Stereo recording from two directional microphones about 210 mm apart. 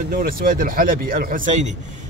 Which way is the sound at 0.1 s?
40° right (ahead or behind).